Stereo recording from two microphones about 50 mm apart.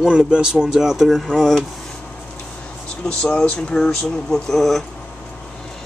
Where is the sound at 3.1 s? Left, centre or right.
Centre.